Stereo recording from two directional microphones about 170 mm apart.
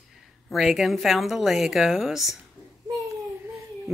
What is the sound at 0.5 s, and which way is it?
Speech, centre (ahead or behind).